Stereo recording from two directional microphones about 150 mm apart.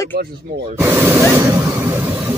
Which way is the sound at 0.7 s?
15° right (ahead or behind).